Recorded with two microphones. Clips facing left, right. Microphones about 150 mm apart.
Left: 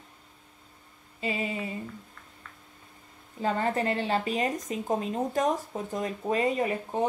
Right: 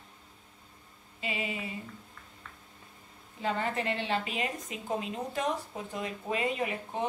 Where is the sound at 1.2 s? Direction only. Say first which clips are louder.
Left 5 dB; 40° left (ahead or behind).